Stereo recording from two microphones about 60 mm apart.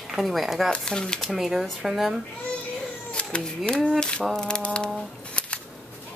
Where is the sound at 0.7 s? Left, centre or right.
Centre.